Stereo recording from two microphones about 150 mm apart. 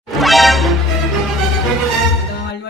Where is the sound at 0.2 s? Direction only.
Centre (ahead or behind).